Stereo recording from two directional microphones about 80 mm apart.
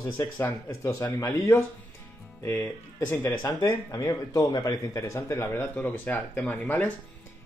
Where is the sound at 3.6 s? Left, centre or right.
Left.